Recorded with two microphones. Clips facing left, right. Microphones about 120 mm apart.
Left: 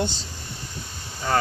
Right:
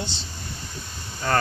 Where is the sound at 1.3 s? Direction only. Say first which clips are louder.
Even; 10° left (ahead or behind).